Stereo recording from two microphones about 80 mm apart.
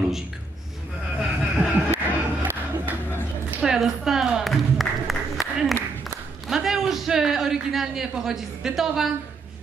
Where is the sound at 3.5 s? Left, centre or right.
Centre.